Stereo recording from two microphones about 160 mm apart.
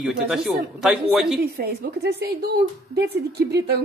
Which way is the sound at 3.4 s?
90° right.